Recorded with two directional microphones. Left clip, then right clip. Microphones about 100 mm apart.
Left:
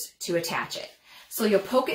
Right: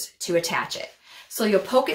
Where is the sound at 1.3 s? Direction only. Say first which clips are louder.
Right 3 dB; 35° right (ahead or behind).